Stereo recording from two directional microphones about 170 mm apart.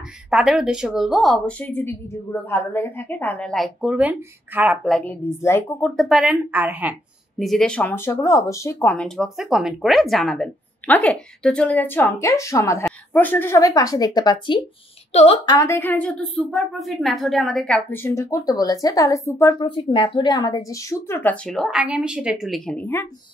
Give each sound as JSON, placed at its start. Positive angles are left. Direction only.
{"t": 0.3, "sound": "a woman's voice", "side_deg": -5}
{"t": 4.8, "sound": "a woman's voice", "side_deg": 5}
{"t": 15.4, "sound": "a woman's voice", "side_deg": 20}
{"t": 19.7, "sound": "a woman's voice", "side_deg": 30}